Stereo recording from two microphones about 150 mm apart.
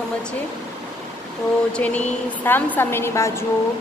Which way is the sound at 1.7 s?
10° left (ahead or behind).